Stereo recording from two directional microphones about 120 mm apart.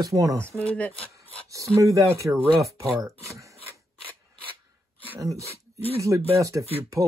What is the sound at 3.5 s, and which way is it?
Filing, 55° left (ahead or behind).